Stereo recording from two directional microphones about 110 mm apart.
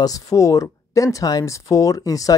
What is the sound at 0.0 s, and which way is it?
Speech, 35° left (ahead or behind).